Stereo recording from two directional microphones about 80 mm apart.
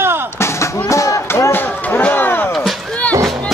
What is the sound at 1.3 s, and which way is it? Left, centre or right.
Chop, left.